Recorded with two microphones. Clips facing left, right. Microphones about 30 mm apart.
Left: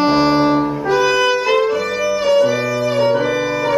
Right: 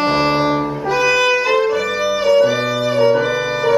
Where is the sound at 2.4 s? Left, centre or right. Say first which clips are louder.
Even; centre.